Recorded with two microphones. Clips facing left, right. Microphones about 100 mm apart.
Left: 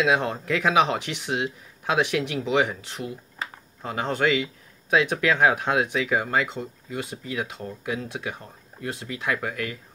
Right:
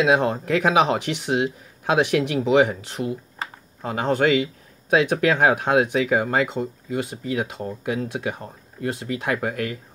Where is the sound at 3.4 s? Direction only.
40° right (ahead or behind).